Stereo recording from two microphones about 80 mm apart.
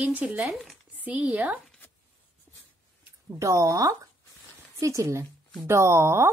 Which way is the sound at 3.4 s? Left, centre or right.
Right.